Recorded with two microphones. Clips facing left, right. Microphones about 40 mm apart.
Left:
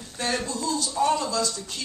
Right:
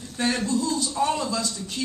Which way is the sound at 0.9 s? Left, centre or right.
Centre.